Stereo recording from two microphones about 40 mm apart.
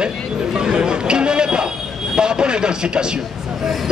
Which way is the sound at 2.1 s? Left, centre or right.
Right.